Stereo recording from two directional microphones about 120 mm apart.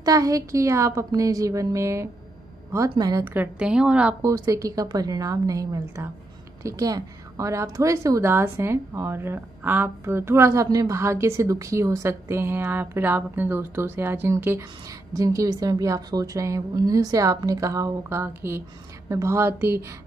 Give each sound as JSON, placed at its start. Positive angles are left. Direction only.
{"t": 0.0, "sound": "a woman's voice", "side_deg": -30}
{"t": 3.3, "sound": "a woman's voice", "side_deg": -10}
{"t": 4.2, "sound": "a woman's voice", "side_deg": -25}